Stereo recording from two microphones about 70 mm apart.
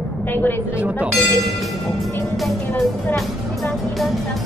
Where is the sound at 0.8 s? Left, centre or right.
Centre.